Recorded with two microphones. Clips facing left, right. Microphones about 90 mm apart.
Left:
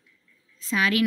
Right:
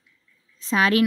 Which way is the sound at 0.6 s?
35° right (ahead or behind).